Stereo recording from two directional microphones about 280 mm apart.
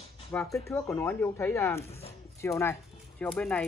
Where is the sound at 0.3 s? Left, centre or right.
Centre.